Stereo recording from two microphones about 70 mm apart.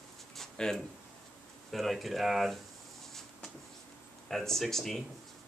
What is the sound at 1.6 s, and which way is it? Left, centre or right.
Speech, centre.